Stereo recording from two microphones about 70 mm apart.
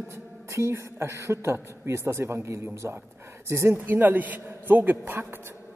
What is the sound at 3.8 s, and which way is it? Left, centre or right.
A man's voice, right.